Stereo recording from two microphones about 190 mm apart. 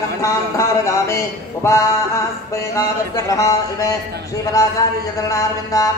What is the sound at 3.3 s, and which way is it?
A man's voice, 15° left (ahead or behind).